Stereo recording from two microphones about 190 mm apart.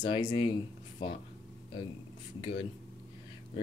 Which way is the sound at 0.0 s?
25° left (ahead or behind).